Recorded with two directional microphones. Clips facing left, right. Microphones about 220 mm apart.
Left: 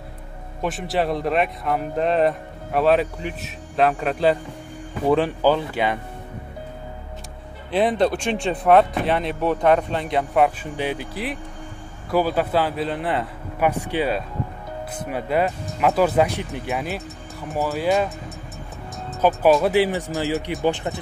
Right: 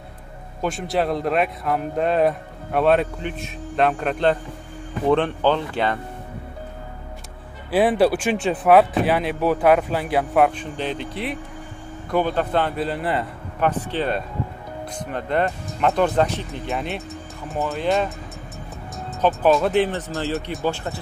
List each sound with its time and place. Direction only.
0.6 s a man's voice: centre (ahead or behind)
7.7 s a man's voice: 5° right (ahead or behind)
10.6 s a man's voice: 10° left (ahead or behind)
13.6 s speech: 10° left (ahead or behind)
16.7 s a man's voice: centre (ahead or behind)
19.2 s speech: 5° left (ahead or behind)